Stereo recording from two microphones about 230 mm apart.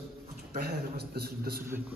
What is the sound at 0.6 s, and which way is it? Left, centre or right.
A man's voice, right.